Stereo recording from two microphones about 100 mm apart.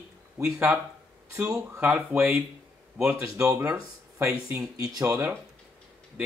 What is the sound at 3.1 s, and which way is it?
Speech, 30° right (ahead or behind).